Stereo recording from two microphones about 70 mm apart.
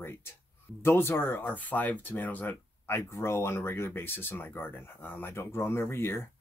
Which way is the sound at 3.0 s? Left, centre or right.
Left.